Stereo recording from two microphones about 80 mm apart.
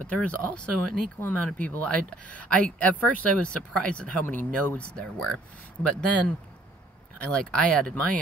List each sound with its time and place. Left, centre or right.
0.1 s speech: centre